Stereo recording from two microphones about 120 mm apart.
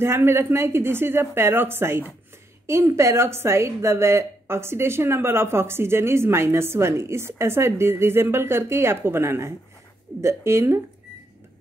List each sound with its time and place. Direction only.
0.0 s a woman's voice: 20° right (ahead or behind)